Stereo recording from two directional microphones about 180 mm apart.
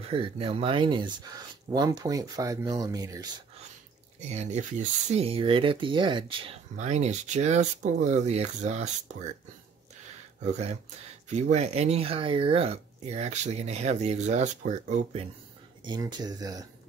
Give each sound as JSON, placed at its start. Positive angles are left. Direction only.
{"t": 0.1, "sound": "speech", "side_deg": -30}
{"t": 4.2, "sound": "speech", "side_deg": -40}
{"t": 10.4, "sound": "speech", "side_deg": -40}
{"t": 15.8, "sound": "speech", "side_deg": -25}